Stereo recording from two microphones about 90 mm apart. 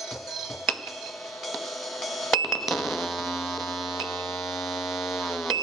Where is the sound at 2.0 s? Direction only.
Centre (ahead or behind).